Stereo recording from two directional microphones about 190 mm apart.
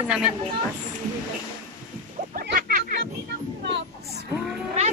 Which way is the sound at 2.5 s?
50° right (ahead or behind).